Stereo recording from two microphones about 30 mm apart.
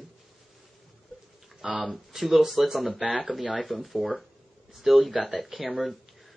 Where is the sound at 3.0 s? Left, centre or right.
Right.